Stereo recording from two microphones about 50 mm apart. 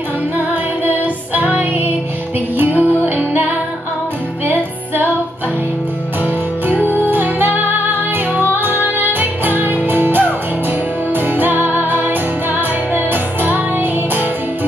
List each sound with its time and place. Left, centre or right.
0.4 s music: right
6.2 s music: right